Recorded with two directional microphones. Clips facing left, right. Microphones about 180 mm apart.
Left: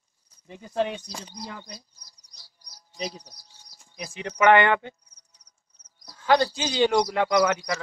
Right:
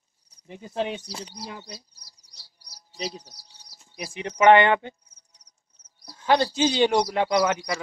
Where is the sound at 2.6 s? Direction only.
35° right (ahead or behind).